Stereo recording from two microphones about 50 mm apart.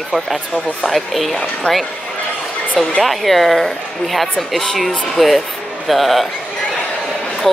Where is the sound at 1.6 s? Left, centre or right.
Left.